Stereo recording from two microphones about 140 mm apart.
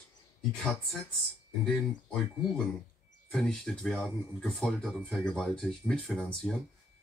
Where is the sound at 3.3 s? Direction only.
5° left (ahead or behind).